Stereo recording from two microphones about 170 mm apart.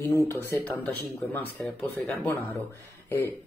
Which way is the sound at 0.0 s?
15° left (ahead or behind).